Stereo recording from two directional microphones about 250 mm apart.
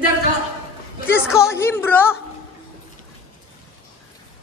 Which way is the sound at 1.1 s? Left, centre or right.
Centre.